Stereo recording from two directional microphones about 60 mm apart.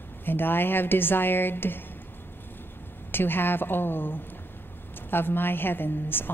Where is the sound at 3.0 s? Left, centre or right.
Left.